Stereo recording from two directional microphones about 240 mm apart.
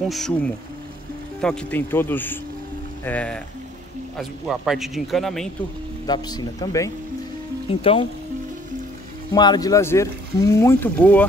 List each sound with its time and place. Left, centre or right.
0.1 s speech: centre
6.0 s speech: centre
9.3 s speech: centre